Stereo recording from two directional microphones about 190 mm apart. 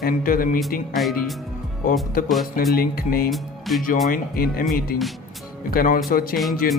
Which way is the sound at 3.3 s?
Centre (ahead or behind).